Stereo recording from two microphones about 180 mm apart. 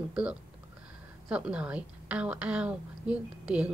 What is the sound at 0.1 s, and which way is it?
A woman's voice, 5° right (ahead or behind).